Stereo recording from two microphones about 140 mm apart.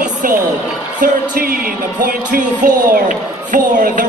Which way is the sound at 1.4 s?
90° right.